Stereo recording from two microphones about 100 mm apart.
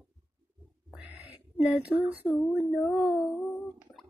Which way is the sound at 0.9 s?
15° right (ahead or behind).